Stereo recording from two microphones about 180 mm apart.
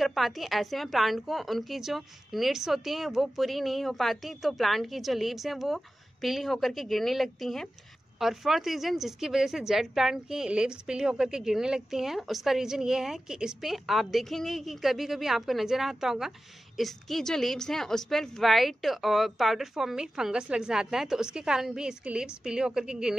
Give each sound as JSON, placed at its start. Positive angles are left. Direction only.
{"t": 0.0, "sound": "a woman's voice", "side_deg": 0}